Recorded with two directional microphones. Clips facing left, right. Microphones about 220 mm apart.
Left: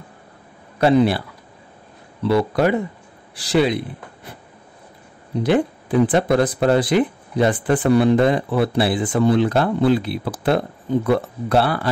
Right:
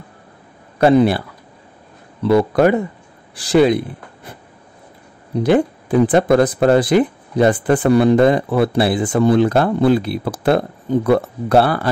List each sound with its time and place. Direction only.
0.7 s speech: 50° right (ahead or behind)
2.2 s speech: 50° right (ahead or behind)
5.4 s speech: 45° right (ahead or behind)